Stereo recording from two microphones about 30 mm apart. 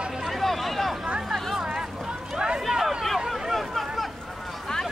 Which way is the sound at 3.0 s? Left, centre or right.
Centre.